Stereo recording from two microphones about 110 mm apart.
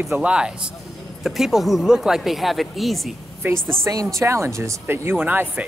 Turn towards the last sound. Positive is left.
turn(degrees=-15)  # may be behind; listen again after turning